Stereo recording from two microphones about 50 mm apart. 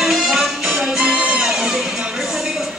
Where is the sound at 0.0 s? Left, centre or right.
Centre.